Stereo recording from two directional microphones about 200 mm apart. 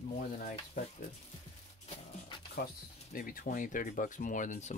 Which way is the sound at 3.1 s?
45° left (ahead or behind).